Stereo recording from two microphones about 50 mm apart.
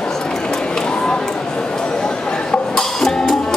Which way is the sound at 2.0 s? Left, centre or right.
Centre.